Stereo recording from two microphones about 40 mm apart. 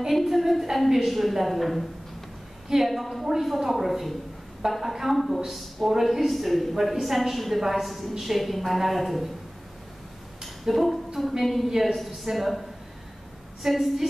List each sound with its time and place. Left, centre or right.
0.1 s speech: centre
10.4 s a sound: centre
11.1 s speech: centre